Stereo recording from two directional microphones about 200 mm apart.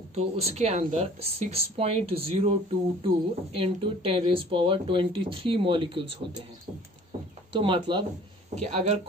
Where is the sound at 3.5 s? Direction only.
25° right (ahead or behind).